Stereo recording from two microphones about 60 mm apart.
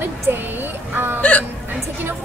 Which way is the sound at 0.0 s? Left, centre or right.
Right.